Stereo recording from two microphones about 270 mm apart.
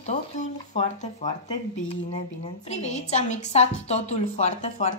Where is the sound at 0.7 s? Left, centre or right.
Left.